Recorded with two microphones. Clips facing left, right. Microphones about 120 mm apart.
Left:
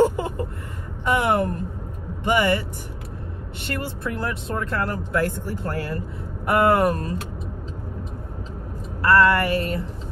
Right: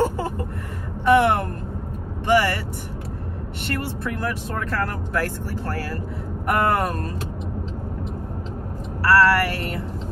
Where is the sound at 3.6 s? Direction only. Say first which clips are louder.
Right 1 dB; 20° left (ahead or behind).